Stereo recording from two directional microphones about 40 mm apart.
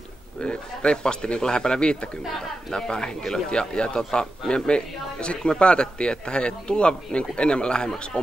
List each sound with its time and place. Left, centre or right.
0.4 s a man's voice: left